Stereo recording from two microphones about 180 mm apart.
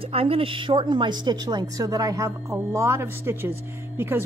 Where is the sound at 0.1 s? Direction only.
30° right (ahead or behind).